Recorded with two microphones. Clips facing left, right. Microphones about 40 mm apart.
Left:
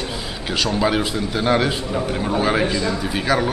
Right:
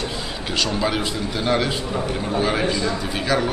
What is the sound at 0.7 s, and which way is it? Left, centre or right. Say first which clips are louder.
A man's voice: left 3 dB; centre.